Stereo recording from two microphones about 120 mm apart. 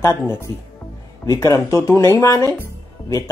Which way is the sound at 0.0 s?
20° left (ahead or behind).